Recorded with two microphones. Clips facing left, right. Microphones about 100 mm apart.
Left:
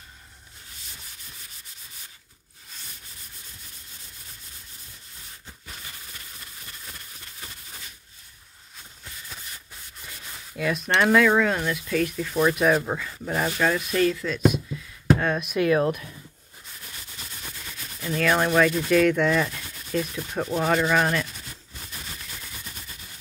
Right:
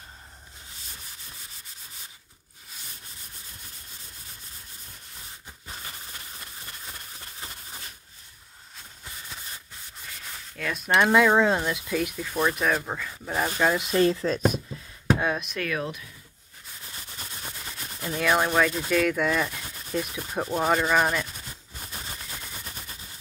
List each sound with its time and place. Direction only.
10.5 s a sound: 5° left (ahead or behind)
11.0 s speech: 20° right (ahead or behind)
11.9 s speech: 10° right (ahead or behind)
13.6 s speech: 15° right (ahead or behind); by 14.6 s 40° right (ahead or behind)
15.1 s speech: 10° right (ahead or behind)
15.8 s speech: 50° left (ahead or behind)
17.3 s a sound: 25° right (ahead or behind)
18.0 s sanding: 10° right (ahead or behind)
18.9 s speech: centre (ahead or behind)
19.9 s sanding: 10° right (ahead or behind)